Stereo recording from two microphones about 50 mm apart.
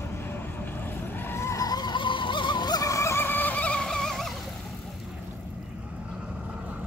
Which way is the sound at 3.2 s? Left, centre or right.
Left.